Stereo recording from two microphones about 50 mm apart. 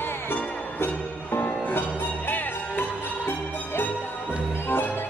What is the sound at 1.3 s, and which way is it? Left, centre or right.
Music, left.